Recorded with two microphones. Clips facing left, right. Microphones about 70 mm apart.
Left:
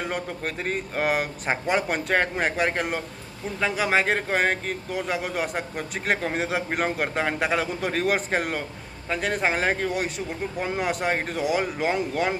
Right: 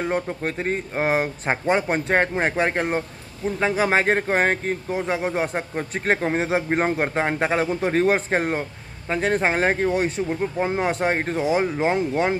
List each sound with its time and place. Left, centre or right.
0.0 s a man's voice: right